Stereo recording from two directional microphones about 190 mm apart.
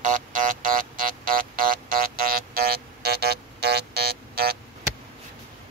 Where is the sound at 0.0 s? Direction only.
40° right (ahead or behind); by 3.8 s 60° right (ahead or behind).